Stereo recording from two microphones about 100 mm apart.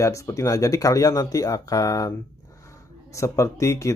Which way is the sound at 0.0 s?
30° left (ahead or behind).